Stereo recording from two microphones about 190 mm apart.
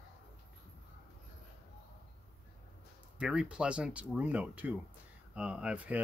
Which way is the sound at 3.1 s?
5° right (ahead or behind).